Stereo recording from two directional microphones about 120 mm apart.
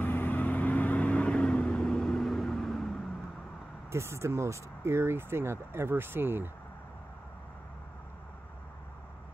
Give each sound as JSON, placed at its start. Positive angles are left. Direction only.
{"t": 0.0, "sound": "vehicle", "side_deg": 15}
{"t": 3.9, "sound": "speech", "side_deg": -25}